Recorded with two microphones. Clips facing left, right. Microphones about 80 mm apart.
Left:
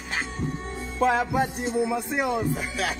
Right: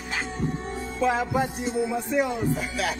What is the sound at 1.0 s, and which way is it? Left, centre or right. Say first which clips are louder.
Music: left 2 dB; left.